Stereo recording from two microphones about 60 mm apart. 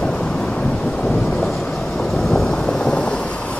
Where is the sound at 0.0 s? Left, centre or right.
Centre.